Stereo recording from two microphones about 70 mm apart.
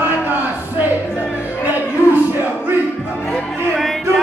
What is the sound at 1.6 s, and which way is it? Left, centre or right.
Music, right.